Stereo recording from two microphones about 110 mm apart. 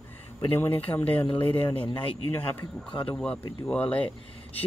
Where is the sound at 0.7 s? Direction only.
55° left (ahead or behind).